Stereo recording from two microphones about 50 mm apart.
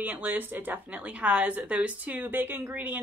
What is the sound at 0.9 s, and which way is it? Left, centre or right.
Speech, right.